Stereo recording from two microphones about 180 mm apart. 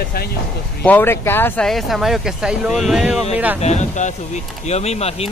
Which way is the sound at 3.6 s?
40° left (ahead or behind).